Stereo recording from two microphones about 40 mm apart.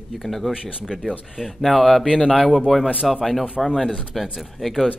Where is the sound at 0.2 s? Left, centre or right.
Centre.